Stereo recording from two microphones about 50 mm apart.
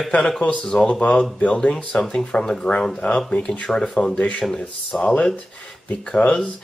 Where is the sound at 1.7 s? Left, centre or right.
Centre.